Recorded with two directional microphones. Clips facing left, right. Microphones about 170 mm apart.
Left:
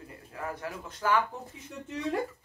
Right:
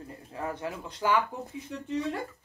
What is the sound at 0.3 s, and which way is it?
Speech, 25° right (ahead or behind).